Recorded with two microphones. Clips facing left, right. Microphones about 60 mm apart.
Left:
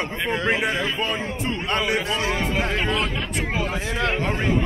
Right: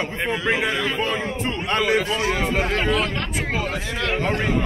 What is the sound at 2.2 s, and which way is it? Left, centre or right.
Speech, centre.